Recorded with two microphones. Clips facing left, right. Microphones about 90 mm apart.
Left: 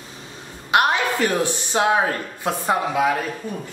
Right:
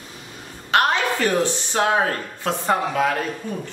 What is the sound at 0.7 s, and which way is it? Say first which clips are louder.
A man's voice: left 1 dB; 15° left (ahead or behind).